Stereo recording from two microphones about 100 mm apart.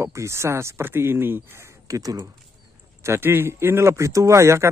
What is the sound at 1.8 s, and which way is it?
Speech, 35° right (ahead or behind).